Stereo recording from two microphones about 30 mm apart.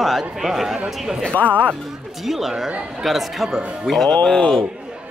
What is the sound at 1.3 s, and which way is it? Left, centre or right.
Speech, left.